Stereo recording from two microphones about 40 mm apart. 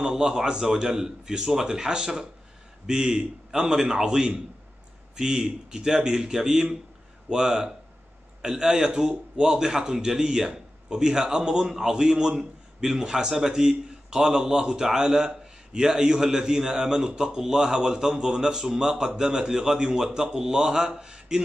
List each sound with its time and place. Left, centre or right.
0.0 s a man's voice: centre